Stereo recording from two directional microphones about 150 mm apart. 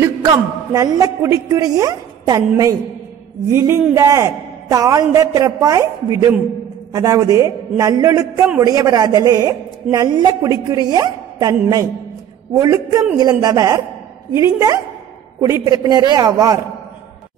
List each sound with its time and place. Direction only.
0.0 s a woman's voice: 20° right (ahead or behind)
15.4 s a woman's voice: 25° right (ahead or behind)